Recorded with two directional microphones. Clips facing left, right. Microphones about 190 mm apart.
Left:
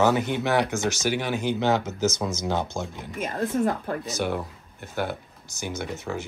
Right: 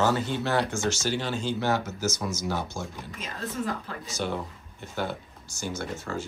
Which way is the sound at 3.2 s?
55° left (ahead or behind).